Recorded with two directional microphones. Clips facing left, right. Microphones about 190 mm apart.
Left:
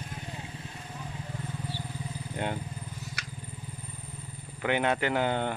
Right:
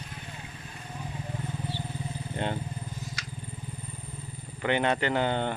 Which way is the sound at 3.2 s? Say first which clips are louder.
Right 1 dB; 65° left (ahead or behind).